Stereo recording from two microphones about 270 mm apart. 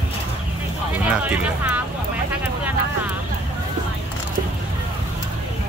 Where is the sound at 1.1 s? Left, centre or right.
Centre.